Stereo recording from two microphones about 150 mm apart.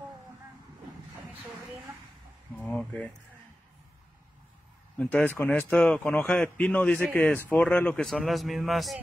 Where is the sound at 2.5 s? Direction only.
10° left (ahead or behind).